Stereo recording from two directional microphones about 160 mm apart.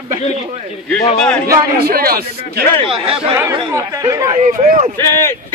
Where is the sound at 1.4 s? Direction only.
70° right (ahead or behind).